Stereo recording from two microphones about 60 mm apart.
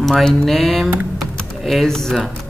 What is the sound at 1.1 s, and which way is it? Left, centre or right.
Typing, centre.